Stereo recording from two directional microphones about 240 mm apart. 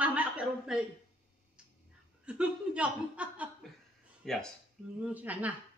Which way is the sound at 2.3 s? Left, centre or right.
Centre.